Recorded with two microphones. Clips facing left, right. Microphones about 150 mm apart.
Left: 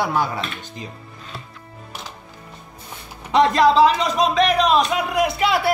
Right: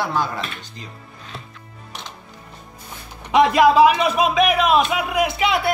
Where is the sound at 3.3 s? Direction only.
10° right (ahead or behind).